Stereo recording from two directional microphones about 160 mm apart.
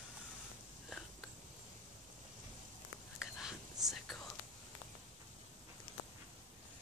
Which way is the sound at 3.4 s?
Centre (ahead or behind).